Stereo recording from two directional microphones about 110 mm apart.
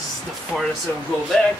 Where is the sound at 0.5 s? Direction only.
15° left (ahead or behind).